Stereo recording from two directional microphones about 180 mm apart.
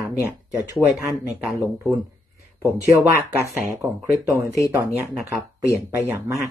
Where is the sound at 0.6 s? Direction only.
15° right (ahead or behind).